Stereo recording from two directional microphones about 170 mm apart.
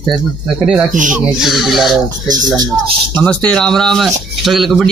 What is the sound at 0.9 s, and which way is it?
Speech, 50° right (ahead or behind).